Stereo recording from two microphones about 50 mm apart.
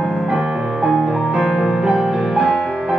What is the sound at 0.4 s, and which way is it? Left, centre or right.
Music, centre.